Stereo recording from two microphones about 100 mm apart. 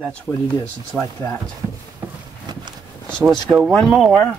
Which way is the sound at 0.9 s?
10° right (ahead or behind).